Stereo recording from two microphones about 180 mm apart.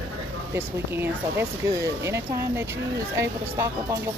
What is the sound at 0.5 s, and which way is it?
Speech, 10° right (ahead or behind).